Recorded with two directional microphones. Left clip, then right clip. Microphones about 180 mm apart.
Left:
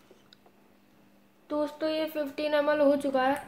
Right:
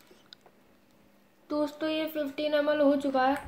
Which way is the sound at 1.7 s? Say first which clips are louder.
Left 1 dB; 10° left (ahead or behind).